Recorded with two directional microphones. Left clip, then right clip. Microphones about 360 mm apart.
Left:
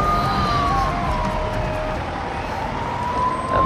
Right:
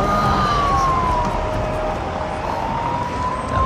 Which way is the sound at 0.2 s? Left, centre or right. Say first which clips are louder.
Right 3 dB; right.